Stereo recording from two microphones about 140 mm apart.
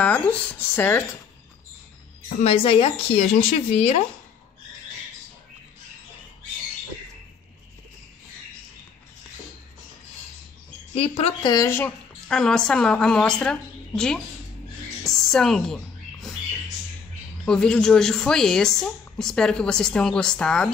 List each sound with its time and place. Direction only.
0.0 s speech: 10° left (ahead or behind)
2.2 s speech: 50° left (ahead or behind)
11.0 s speech: 50° left (ahead or behind)
11.4 s speech: 25° left (ahead or behind)
12.3 s a woman's voice: 5° left (ahead or behind)
15.0 s a sound: 5° left (ahead or behind)
17.5 s a woman's voice: 5° left (ahead or behind)